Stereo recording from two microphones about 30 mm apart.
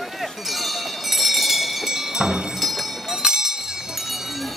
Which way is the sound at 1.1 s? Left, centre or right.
Centre.